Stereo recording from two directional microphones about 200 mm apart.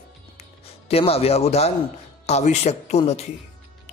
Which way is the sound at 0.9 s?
30° left (ahead or behind).